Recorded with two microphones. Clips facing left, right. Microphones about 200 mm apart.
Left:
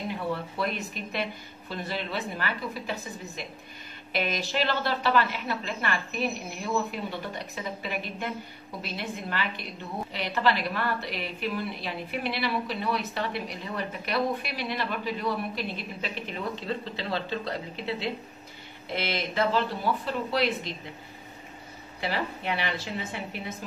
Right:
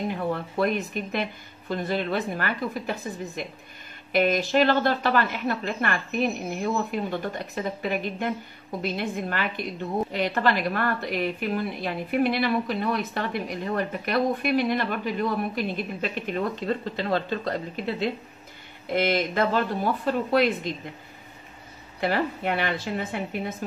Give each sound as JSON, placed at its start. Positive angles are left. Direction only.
{"t": 0.1, "sound": "a woman's voice", "side_deg": -50}
{"t": 22.0, "sound": "a woman's voice", "side_deg": -50}